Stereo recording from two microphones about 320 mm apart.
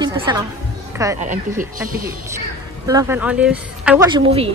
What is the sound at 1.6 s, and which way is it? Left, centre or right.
Speech, right.